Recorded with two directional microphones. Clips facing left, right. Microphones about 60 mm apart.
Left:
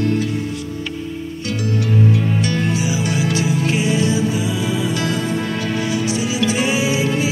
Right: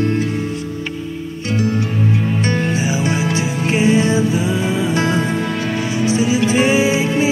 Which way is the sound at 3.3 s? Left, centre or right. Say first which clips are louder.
Right 1 dB; right.